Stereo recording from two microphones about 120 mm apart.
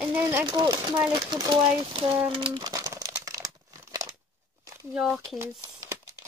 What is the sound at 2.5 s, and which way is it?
Crumpling, 30° right (ahead or behind).